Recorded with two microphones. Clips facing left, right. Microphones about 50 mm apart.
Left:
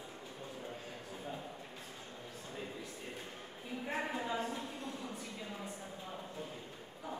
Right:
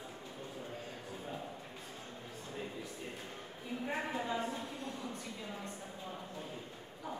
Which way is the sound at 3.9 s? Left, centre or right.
Centre.